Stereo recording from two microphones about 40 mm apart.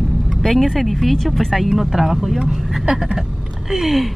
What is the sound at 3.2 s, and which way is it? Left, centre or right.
Speech, centre.